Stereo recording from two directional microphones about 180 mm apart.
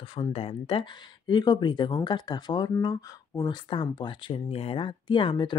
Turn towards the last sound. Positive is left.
turn(degrees=25)  # may be behind; listen again after turning